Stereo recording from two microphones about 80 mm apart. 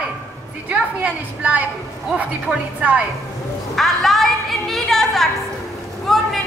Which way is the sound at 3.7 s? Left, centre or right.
Centre.